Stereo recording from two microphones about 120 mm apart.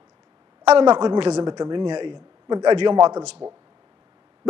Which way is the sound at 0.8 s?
40° right (ahead or behind).